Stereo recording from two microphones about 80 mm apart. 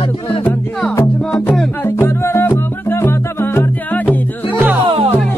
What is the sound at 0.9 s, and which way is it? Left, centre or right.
Music, left.